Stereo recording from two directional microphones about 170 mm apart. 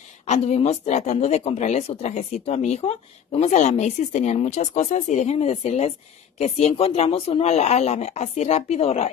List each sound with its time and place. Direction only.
0.3 s speech: 35° left (ahead or behind)